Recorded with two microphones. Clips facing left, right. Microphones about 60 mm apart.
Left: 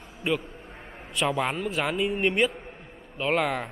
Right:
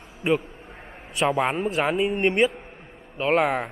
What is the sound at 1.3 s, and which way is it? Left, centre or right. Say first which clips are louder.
Speech: right 4 dB; right.